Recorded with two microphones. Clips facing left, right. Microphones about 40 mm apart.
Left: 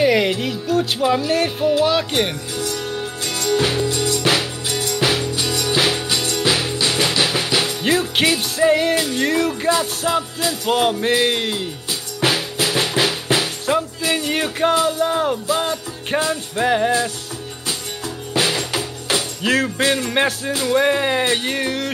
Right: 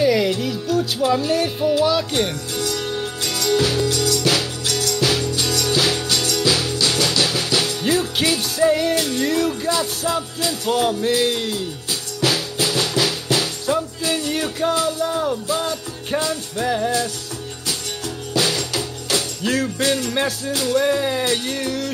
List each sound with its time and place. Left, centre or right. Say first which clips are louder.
0.0 s music: left 1 dB; left
1.6 s music: left 1 dB; centre
1.9 s music: left 1 dB; left
12.2 s drum: left 1 dB; left
14.9 s music: left 2 dB; left
18.3 s music: left 1 dB; left